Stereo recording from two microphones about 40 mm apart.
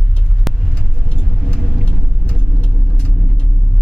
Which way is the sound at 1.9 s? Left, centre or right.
Left.